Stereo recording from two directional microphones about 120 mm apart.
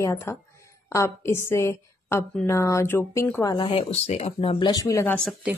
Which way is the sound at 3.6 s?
50° left (ahead or behind).